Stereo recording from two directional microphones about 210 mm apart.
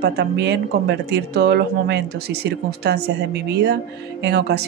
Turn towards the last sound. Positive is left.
turn(degrees=-50)  # may be behind; listen again after turning